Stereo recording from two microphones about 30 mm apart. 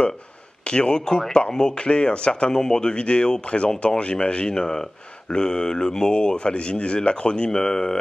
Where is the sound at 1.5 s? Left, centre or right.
Left.